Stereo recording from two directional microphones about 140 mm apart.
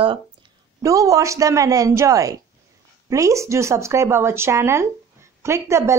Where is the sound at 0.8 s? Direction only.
25° right (ahead or behind).